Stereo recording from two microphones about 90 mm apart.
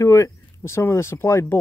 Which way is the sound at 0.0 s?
35° left (ahead or behind).